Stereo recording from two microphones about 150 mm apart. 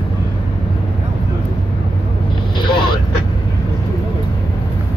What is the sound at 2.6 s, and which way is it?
Vehicle, 30° left (ahead or behind).